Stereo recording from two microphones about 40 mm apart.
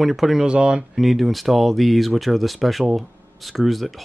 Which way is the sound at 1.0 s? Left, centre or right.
Centre.